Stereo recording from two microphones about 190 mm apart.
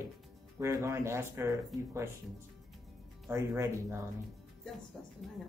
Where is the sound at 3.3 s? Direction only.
20° right (ahead or behind).